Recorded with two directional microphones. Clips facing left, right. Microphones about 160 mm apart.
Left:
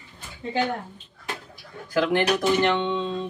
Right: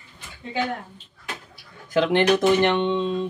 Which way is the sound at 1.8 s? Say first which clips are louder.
Right 3 dB; 20° right (ahead or behind).